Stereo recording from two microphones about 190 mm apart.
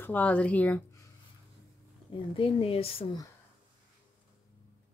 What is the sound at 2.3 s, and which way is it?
Speech, 30° left (ahead or behind).